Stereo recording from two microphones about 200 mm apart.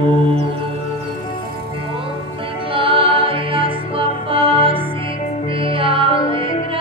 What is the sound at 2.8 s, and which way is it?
Music, 25° right (ahead or behind).